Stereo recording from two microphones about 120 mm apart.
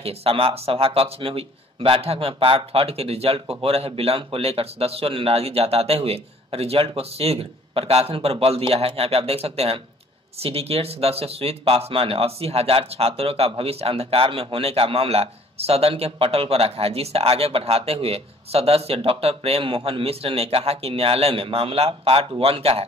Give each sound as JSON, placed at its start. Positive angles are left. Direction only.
{"t": 0.0, "sound": "speech", "side_deg": -55}